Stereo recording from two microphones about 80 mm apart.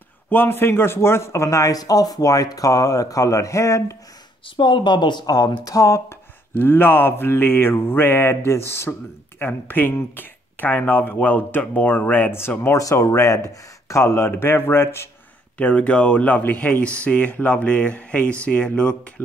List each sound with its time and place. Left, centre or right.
0.3 s speech: left
4.6 s speech: left
6.5 s mantra: left
8.5 s speech: left
9.4 s mantra: left
12.7 s speech: left
15.5 s speech: centre